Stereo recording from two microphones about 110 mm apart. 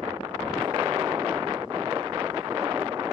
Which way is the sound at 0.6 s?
40° right (ahead or behind).